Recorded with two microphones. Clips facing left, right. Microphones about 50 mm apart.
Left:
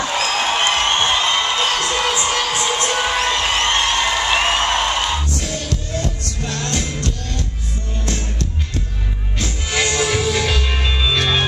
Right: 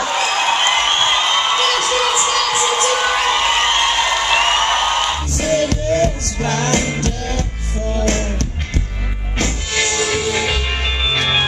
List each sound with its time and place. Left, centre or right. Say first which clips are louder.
0.0 s a sound: right 2 dB; centre
2.2 s music: right 2 dB; centre
2.5 s music: right 3 dB; centre
2.9 s crowd: right 3 dB; centre
3.2 s music: right 3 dB; centre
5.4 s music: right 9 dB; right
9.7 s music: left 2 dB; centre